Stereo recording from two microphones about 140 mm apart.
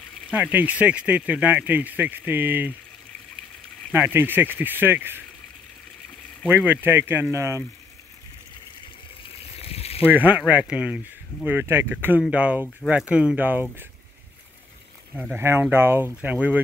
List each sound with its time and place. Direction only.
0.3 s speech: 10° right (ahead or behind)
3.9 s speech: 15° right (ahead or behind)
6.5 s speech: 15° right (ahead or behind)
9.5 s a sound: 45° left (ahead or behind)
10.0 s speech: 10° right (ahead or behind)
15.3 s speech: 15° right (ahead or behind)